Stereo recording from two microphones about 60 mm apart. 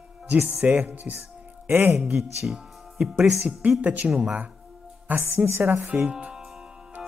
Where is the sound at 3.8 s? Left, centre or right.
Right.